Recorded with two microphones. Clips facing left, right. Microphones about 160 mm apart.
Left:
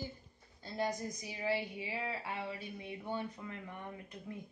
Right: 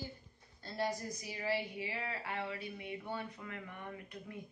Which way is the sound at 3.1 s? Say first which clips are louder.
Left 2 dB; 25° left (ahead or behind).